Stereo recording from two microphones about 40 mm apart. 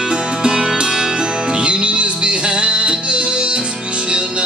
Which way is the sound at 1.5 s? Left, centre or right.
Right.